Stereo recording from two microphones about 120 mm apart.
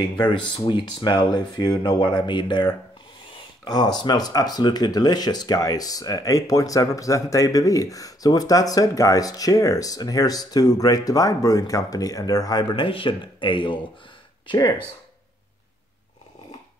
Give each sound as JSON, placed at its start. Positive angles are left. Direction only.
{"t": 0.2, "sound": "speech", "side_deg": 40}
{"t": 12.8, "sound": "speech", "side_deg": 45}